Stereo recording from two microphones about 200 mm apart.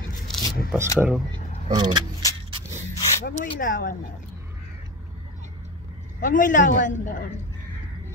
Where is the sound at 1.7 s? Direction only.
20° right (ahead or behind).